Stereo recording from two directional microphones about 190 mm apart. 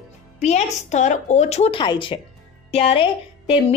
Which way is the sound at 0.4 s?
35° left (ahead or behind).